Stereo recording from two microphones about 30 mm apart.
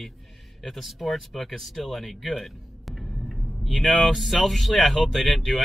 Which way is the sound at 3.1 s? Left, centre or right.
Centre.